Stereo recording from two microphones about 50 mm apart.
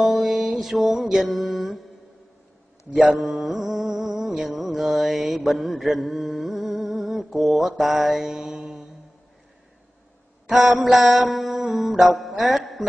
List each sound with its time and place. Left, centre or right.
0.1 s music: centre
2.9 s speech: right
3.2 s mantra: centre
3.5 s a sound: centre
4.5 s mantra: centre
8.5 s mantra: right
10.4 s a sound: centre
10.9 s mantra: centre
11.7 s music: centre
12.5 s a sound: centre